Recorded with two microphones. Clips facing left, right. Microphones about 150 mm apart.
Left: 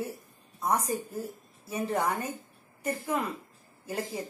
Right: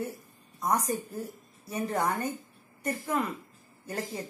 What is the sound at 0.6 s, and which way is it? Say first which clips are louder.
Speech: even; 30° left (ahead or behind).